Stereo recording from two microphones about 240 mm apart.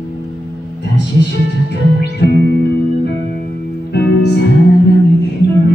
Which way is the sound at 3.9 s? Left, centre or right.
Left.